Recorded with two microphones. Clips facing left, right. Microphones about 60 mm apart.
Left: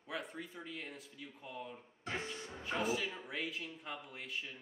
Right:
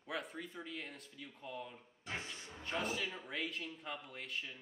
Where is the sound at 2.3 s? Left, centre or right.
Left.